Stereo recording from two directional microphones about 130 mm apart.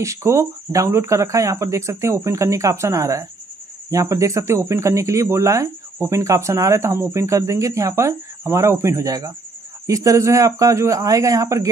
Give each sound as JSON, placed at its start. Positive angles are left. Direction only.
{"t": 0.0, "sound": "speech", "side_deg": -20}